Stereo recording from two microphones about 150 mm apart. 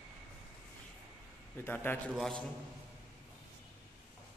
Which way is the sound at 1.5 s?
15° left (ahead or behind).